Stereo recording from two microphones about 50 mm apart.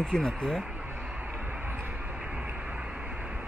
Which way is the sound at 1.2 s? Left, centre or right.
Right.